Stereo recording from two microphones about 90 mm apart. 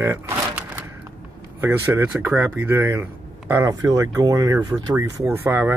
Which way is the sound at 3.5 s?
40° right (ahead or behind).